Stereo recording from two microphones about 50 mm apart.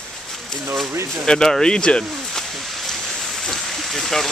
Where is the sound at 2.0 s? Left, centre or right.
Centre.